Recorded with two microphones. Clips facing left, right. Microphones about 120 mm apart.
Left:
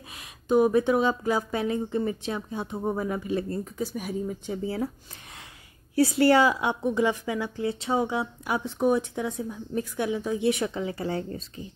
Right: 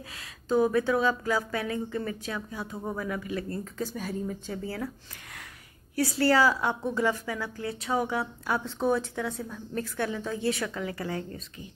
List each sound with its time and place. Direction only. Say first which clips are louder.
0.1 s a woman's voice: left 4 dB; 20° left (ahead or behind)
4.6 s a woman's voice: left 7 dB; 25° left (ahead or behind)